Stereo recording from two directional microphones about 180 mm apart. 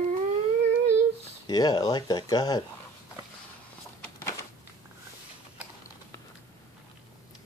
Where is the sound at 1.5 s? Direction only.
20° left (ahead or behind).